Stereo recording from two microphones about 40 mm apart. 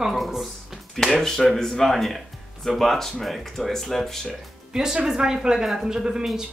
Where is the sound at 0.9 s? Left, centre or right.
Centre.